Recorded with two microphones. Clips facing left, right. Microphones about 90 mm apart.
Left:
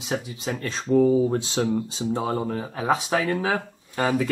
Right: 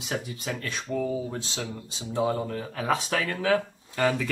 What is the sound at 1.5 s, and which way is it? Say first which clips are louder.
Speech: left 11 dB; 35° left (ahead or behind).